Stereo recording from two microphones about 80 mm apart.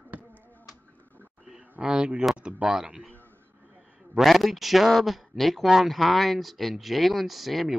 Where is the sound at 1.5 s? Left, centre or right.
Centre.